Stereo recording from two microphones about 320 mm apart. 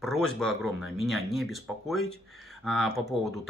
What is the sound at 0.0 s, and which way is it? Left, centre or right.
Speech, centre.